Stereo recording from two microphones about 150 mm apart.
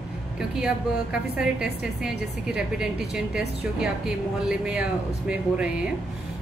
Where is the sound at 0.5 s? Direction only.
5° right (ahead or behind).